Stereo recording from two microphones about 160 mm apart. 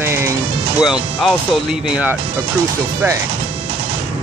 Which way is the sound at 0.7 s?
5° right (ahead or behind).